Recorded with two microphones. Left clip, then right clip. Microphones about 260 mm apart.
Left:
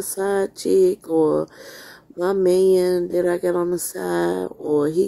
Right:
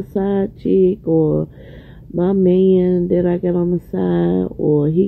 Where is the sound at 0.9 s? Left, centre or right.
Centre.